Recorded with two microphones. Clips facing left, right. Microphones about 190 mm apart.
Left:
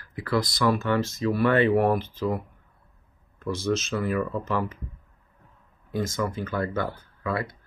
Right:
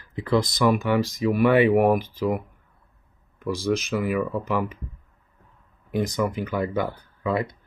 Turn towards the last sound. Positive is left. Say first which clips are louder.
# right 4 dB
turn(degrees=-20)  # may be behind; listen again after turning